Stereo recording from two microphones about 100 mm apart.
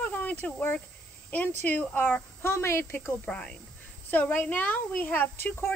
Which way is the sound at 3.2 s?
10° left (ahead or behind).